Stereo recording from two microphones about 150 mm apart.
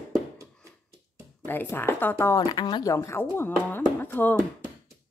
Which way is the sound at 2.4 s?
30° left (ahead or behind).